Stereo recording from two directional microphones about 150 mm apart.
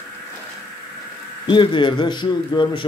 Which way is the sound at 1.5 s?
30° left (ahead or behind).